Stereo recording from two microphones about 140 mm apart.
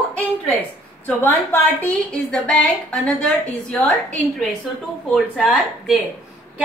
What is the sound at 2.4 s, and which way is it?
A woman's voice, centre (ahead or behind).